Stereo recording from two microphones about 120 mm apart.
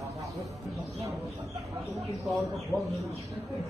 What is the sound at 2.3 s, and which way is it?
Speech, centre (ahead or behind).